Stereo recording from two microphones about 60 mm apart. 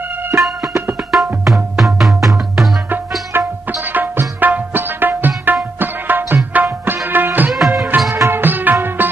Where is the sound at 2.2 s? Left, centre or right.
Centre.